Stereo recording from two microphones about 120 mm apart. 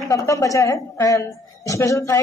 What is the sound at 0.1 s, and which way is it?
A man's voice, 25° left (ahead or behind).